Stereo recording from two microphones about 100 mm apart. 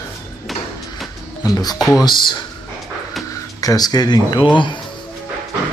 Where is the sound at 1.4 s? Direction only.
40° left (ahead or behind).